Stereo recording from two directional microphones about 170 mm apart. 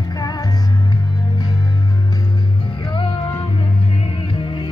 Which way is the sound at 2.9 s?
30° left (ahead or behind).